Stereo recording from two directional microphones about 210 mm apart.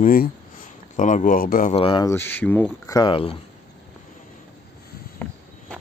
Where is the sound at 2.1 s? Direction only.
10° left (ahead or behind).